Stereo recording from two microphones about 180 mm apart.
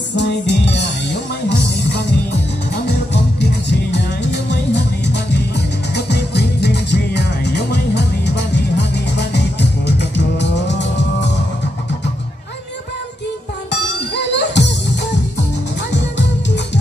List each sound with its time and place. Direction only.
0.1 s music: 70° left (ahead or behind)
3.1 s music: 70° left (ahead or behind)
14.3 s music: 75° left (ahead or behind)
15.9 s music: 75° left (ahead or behind)